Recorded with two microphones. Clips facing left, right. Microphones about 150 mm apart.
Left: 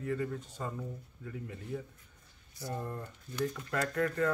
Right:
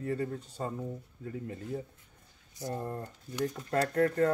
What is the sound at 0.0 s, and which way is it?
Speech, 35° right (ahead or behind).